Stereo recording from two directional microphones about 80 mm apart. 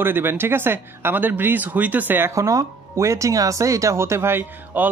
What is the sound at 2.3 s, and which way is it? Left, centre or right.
Speech, right.